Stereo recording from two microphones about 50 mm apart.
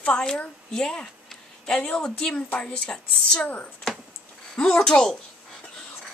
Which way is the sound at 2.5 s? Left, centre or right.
Left.